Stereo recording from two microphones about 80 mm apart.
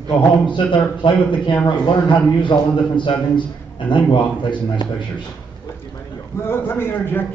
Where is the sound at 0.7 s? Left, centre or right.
Left.